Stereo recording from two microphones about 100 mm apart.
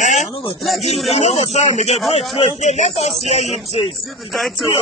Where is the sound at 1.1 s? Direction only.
90° left.